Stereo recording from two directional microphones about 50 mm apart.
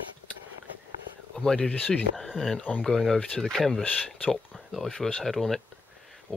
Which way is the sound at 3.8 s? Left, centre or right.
Left.